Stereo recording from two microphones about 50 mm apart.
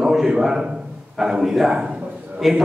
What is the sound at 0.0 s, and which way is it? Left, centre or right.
A man's voice, centre.